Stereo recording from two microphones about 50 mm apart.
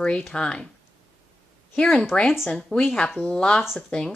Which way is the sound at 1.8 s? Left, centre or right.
Centre.